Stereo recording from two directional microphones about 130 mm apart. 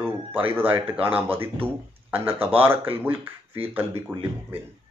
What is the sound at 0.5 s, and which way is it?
Speech, 15° right (ahead or behind).